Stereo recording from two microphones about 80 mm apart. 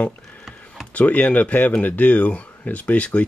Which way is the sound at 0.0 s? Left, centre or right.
Centre.